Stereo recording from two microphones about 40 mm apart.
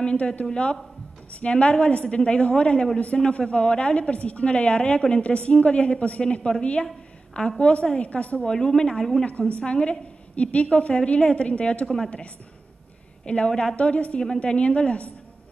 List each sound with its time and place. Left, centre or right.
0.0 s a woman's voice: left
8.4 s a woman's voice: centre
9.6 s a woman's voice: left
13.2 s a woman's voice: left